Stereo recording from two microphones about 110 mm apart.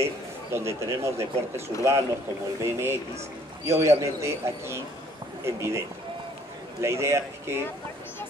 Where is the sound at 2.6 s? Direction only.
20° right (ahead or behind).